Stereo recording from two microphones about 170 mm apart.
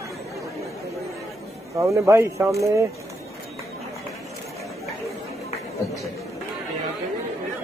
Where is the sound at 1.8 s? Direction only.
15° right (ahead or behind).